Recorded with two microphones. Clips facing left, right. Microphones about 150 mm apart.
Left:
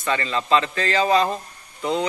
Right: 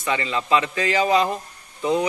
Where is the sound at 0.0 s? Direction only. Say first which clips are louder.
Even; 15° right (ahead or behind).